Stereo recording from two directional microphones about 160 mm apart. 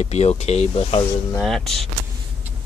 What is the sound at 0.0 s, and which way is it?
Speech, 40° left (ahead or behind).